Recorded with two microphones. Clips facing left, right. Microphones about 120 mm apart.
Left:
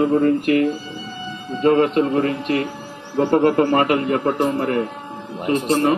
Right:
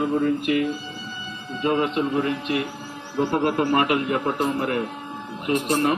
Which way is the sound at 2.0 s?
65° left (ahead or behind).